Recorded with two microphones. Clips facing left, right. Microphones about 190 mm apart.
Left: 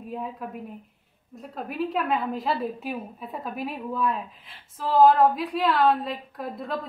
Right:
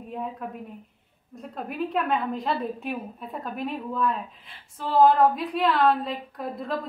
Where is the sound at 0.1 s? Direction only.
Centre (ahead or behind).